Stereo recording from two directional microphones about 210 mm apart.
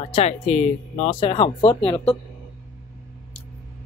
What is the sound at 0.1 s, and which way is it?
Speech, 30° left (ahead or behind).